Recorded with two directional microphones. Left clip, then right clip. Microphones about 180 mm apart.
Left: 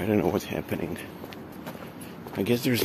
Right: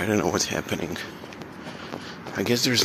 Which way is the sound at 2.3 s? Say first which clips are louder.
Right 2 dB; 10° left (ahead or behind).